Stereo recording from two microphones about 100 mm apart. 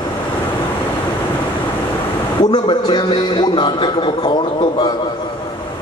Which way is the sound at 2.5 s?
50° left (ahead or behind).